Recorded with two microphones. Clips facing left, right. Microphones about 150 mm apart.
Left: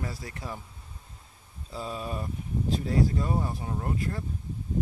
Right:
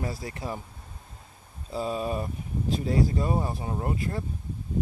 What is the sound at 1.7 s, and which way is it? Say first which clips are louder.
Speech: right 6 dB; 15° right (ahead or behind).